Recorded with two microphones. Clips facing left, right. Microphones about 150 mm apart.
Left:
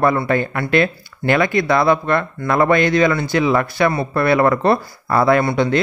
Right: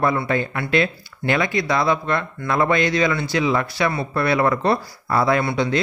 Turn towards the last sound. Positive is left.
turn(degrees=55)  # may be behind; listen again after turning